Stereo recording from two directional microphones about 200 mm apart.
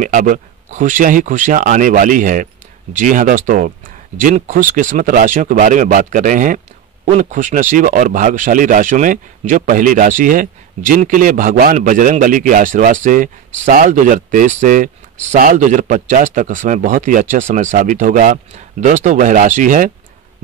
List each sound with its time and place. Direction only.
0.0 s speech: 40° right (ahead or behind)